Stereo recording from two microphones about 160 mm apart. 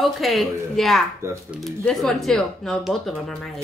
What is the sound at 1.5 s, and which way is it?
Speech, centre (ahead or behind).